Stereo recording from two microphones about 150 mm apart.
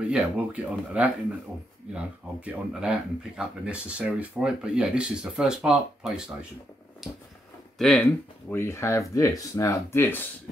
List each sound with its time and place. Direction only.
0.1 s speech: 10° right (ahead or behind)
8.0 s speech: 15° left (ahead or behind)